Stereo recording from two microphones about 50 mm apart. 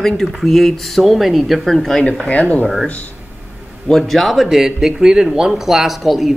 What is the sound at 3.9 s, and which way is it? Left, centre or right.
Speech, centre.